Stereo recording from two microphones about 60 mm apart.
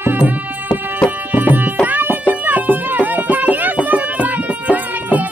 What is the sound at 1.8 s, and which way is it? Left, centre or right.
Music, right.